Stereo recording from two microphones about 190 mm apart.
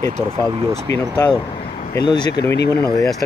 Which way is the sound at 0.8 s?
15° left (ahead or behind).